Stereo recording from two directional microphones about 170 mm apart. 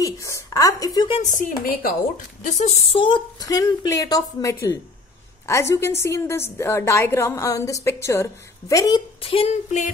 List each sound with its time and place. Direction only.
0.0 s speech: 20° left (ahead or behind)
1.2 s a woman's voice: 55° left (ahead or behind)